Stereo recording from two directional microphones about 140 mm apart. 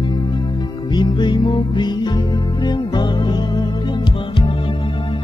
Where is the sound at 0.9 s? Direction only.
30° left (ahead or behind).